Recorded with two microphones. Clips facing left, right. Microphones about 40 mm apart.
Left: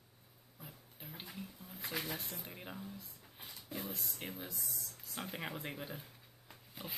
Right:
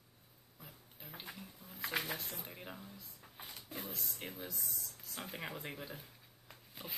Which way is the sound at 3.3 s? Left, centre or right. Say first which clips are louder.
Right 2 dB; right.